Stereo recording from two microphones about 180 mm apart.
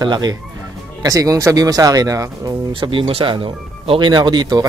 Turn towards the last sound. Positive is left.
turn(degrees=-20)  # may be behind; listen again after turning